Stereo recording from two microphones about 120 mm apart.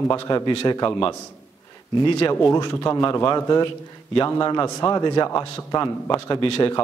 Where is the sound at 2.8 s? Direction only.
35° left (ahead or behind).